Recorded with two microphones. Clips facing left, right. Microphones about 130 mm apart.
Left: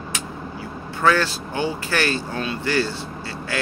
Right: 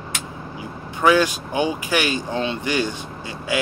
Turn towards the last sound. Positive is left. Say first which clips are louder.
# right 3 dB
turn(degrees=-15)  # may be behind; listen again after turning